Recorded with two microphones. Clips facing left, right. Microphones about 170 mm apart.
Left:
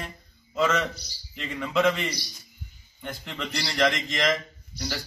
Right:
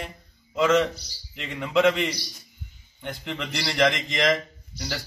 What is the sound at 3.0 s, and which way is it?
A man's voice, 10° right (ahead or behind).